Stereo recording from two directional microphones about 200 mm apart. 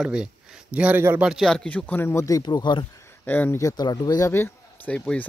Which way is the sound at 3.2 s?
10° left (ahead or behind).